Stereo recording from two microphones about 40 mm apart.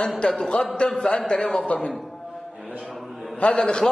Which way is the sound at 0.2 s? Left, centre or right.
Left.